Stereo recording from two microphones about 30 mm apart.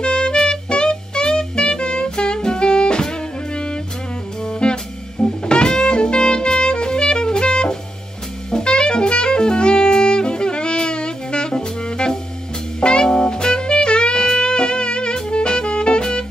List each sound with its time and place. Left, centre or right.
0.0 s music: left
4.5 s jazz: left
5.2 s music: left
8.5 s saxophone: left
15.2 s music: left